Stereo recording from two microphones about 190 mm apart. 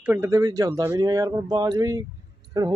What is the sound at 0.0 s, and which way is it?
Speech, 10° right (ahead or behind).